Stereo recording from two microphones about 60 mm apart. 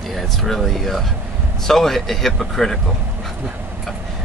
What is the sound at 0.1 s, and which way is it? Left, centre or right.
Speech, centre.